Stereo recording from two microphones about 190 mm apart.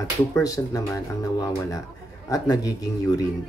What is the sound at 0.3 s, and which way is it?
Speech, 20° left (ahead or behind).